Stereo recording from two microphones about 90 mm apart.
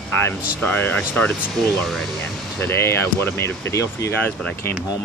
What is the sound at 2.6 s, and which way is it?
Speech, 25° left (ahead or behind).